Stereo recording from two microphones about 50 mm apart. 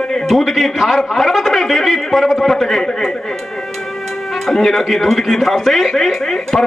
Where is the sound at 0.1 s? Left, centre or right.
Centre.